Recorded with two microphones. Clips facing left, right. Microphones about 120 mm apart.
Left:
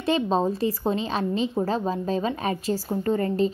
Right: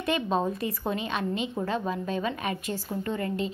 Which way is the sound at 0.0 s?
30° left (ahead or behind).